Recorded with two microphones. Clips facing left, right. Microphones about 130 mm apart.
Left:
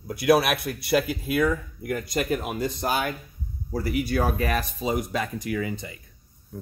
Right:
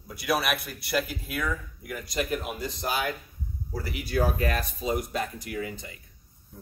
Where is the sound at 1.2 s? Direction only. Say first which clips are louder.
Left 8 dB; 60° left (ahead or behind).